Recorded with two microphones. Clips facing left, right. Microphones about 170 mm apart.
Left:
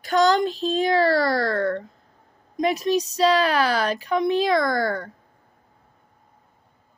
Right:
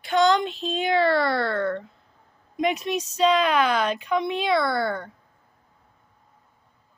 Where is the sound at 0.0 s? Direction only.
40° left (ahead or behind).